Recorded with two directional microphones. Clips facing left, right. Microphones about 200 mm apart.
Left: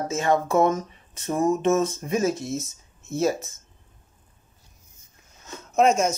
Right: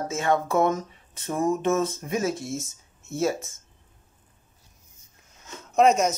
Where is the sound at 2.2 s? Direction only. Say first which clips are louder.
Left 3 dB; 20° left (ahead or behind).